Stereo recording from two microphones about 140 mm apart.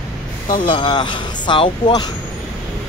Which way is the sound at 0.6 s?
35° left (ahead or behind).